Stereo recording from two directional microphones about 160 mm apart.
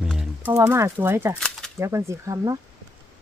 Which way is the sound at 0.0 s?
5° right (ahead or behind).